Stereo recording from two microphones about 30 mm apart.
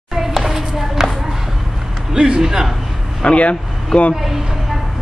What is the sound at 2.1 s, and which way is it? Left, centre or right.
Speech, right.